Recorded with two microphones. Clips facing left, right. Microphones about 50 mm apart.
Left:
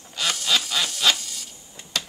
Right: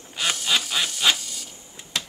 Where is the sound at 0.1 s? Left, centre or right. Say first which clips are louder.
Even; centre.